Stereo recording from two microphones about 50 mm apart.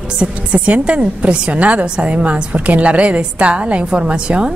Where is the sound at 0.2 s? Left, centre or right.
Right.